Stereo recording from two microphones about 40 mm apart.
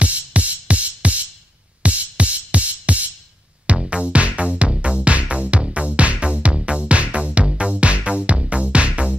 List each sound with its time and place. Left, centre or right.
0.0 s music: right